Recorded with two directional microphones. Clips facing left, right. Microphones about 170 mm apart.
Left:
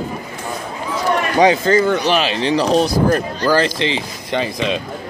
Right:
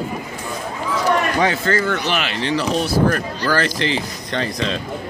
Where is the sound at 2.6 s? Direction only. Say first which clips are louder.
Left 8 dB; 35° left (ahead or behind).